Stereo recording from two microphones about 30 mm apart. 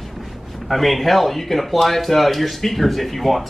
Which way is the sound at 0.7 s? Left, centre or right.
Centre.